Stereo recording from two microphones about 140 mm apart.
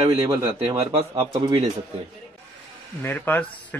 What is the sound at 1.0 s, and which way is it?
Speech, 25° right (ahead or behind).